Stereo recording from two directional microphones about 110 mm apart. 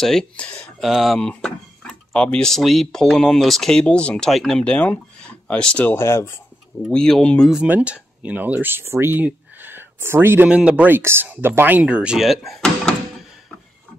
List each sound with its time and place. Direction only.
0.0 s speech: 5° left (ahead or behind)
0.7 s speech: centre (ahead or behind)
5.9 s speech: 25° left (ahead or behind)
6.9 s speech: 10° left (ahead or behind)
7.5 s speech: 10° right (ahead or behind)
10.5 s speech: 10° right (ahead or behind)